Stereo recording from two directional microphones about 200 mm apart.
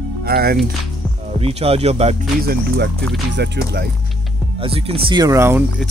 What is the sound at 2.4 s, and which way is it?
Speech, 50° right (ahead or behind).